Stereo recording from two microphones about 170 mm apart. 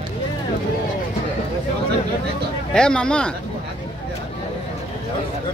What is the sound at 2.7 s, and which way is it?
Speech, 5° left (ahead or behind).